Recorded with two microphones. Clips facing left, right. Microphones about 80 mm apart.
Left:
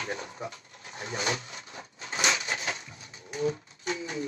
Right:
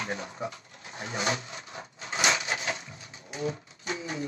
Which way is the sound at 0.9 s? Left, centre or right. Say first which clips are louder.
Right 1 dB; right.